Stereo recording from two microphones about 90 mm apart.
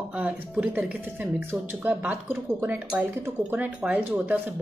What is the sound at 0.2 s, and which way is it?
A woman's voice, 15° right (ahead or behind).